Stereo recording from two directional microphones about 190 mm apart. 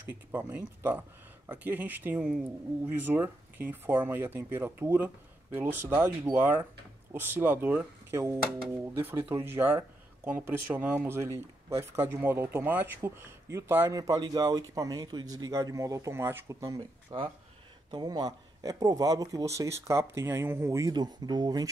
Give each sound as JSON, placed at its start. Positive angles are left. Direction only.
{"t": 0.1, "sound": "speech", "side_deg": -10}